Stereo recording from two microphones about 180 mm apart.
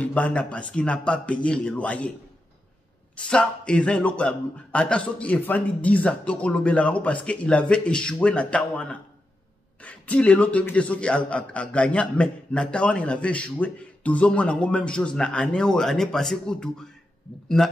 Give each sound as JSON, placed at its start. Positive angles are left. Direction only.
{"t": 0.0, "sound": "a man's voice", "side_deg": 5}
{"t": 3.2, "sound": "a man's voice", "side_deg": 5}